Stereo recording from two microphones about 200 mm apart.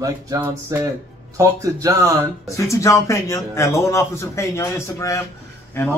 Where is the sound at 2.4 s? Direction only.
15° left (ahead or behind).